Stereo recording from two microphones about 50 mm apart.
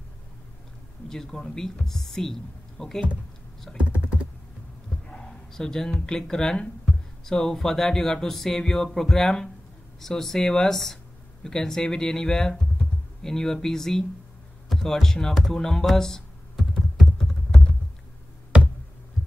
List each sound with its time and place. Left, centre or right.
1.0 s speech: centre
3.7 s computer keyboard: right
5.0 s bow-wow: centre
5.9 s speech: centre
14.7 s a sound: centre